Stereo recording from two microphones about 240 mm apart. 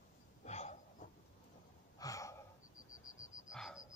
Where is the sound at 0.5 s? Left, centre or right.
Left.